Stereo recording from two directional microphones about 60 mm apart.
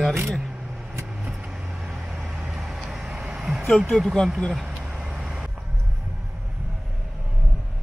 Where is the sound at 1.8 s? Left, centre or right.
Centre.